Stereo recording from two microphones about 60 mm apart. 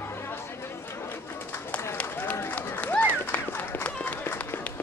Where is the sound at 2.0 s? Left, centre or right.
Left.